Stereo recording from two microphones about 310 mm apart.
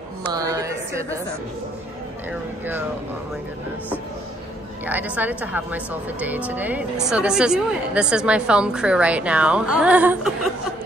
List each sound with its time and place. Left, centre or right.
0.3 s a woman's voice: centre
4.8 s a woman's voice: centre